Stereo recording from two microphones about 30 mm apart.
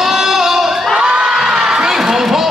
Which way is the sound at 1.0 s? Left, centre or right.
Right.